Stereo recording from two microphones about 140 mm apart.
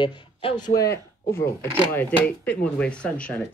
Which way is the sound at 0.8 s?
15° left (ahead or behind).